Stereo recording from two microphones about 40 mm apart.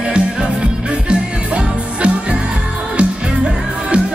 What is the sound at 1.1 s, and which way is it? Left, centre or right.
Music, right.